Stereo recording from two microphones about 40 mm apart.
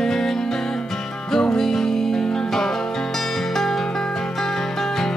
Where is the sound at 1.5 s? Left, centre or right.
Centre.